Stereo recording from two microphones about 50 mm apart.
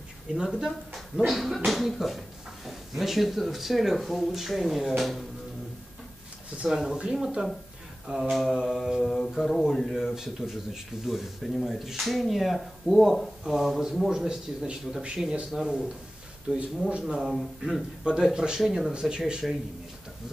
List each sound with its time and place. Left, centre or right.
0.4 s speech: centre
6.6 s speech: centre
8.1 s speech: centre
9.0 s a sound: centre
9.6 s speech: centre
10.1 s speech: centre
17.1 s speech: centre
18.1 s speech: centre
18.6 s speech: centre
18.9 s speech: centre